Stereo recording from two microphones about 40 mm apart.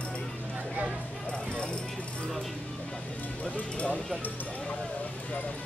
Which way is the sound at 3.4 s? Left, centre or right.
Left.